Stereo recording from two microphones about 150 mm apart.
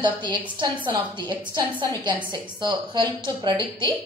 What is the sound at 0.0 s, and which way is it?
Speech, 30° right (ahead or behind).